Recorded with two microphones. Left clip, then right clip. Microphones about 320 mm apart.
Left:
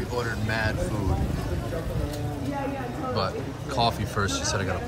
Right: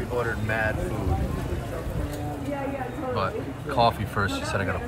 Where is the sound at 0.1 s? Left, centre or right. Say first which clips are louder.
Right 3 dB; centre.